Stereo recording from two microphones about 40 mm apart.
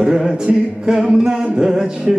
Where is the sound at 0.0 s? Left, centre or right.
Centre.